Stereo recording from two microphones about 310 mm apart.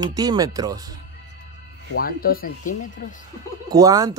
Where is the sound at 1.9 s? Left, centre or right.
Left.